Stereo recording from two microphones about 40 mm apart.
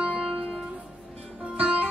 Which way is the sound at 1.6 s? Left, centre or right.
Right.